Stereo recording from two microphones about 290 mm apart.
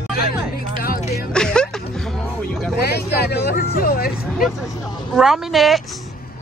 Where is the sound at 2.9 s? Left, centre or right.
Left.